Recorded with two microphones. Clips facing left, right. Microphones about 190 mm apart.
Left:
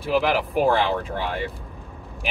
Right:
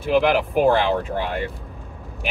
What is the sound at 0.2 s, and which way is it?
Speech, centre (ahead or behind).